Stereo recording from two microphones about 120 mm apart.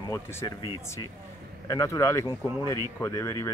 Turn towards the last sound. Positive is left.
turn(degrees=30)  # may be behind; listen again after turning